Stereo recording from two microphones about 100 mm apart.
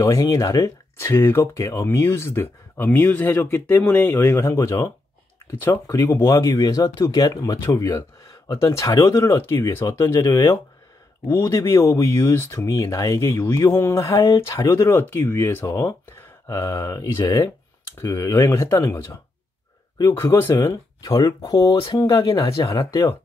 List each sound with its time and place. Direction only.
0.0 s speech: 35° left (ahead or behind)
6.2 s speech: 35° left (ahead or behind)
20.2 s speech: 25° left (ahead or behind)
20.5 s speech: 40° left (ahead or behind)